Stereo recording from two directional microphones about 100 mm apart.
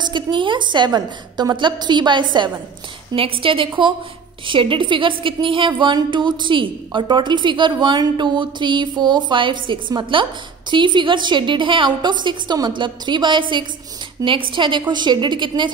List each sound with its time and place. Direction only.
0.0 s a woman's voice: 50° right (ahead or behind)
3.2 s a woman's voice: 65° right (ahead or behind)